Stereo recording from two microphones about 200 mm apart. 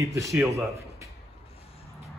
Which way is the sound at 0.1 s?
15° right (ahead or behind).